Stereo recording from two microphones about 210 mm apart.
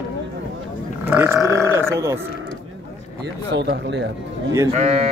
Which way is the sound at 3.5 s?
55° right (ahead or behind).